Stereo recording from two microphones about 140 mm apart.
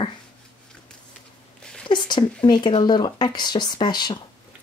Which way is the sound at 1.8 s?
35° left (ahead or behind).